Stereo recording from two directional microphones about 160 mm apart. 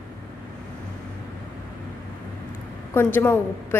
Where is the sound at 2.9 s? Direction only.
15° left (ahead or behind).